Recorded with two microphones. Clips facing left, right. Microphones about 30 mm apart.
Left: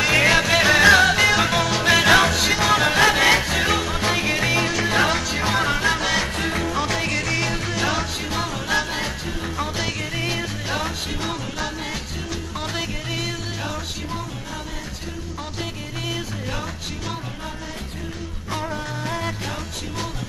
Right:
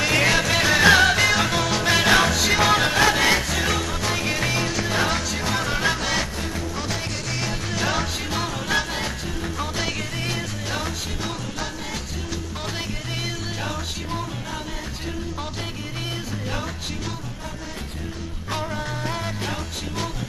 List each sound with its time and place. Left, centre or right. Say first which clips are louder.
0.1 s music: left 3 dB; centre
2.5 s music: right 2 dB; centre
2.9 s music: left 2 dB; centre
5.8 s music: left 2 dB; centre
6.3 s music: left 5 dB; left
7.1 s music: left 5 dB; centre
10.2 s music: left 2 dB; centre